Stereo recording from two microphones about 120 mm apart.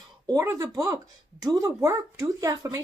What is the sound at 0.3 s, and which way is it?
Speech, 30° right (ahead or behind).